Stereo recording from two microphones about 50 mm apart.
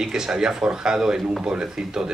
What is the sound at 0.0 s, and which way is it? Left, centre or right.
Speech, centre.